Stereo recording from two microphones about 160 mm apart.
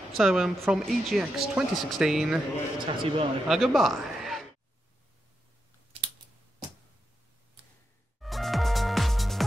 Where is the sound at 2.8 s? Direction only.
30° right (ahead or behind).